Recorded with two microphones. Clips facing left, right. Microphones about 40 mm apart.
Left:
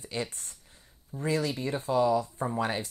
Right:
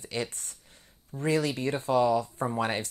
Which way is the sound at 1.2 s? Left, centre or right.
Right.